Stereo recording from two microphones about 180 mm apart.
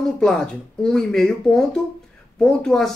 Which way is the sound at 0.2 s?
5° left (ahead or behind).